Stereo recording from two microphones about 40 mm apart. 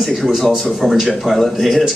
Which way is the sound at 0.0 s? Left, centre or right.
Centre.